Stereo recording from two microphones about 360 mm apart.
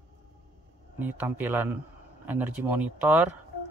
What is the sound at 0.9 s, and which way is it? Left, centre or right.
Speech, centre.